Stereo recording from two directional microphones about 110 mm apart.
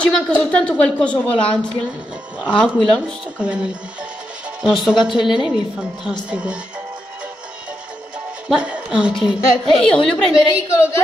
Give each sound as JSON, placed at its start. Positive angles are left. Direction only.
{"t": 0.0, "sound": "a woman's voice", "side_deg": 10}
{"t": 3.3, "sound": "a woman's voice", "side_deg": -10}
{"t": 8.5, "sound": "a woman's voice", "side_deg": -10}
{"t": 10.7, "sound": "a woman's voice", "side_deg": 25}